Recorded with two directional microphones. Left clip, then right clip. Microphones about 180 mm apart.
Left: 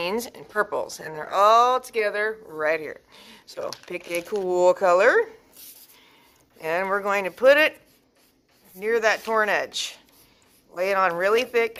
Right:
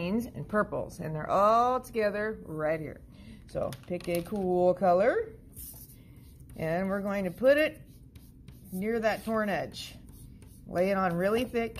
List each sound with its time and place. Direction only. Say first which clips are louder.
0.0 s speech: left 7 dB; 15° left (ahead or behind)
2.5 s speech: left 5 dB; 15° left (ahead or behind)
6.6 s speech: left 7 dB; 20° left (ahead or behind)
8.7 s speech: left 8 dB; 20° left (ahead or behind)